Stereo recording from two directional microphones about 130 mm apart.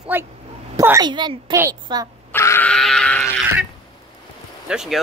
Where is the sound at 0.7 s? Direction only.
25° right (ahead or behind).